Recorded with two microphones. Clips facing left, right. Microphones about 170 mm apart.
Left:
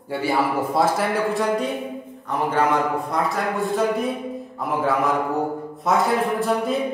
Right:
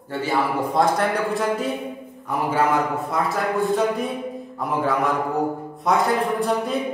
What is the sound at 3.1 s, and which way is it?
A man's voice, centre (ahead or behind).